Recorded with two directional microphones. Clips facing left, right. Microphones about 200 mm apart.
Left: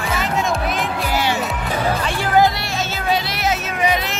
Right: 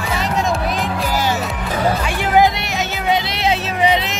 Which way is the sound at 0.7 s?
40° right (ahead or behind).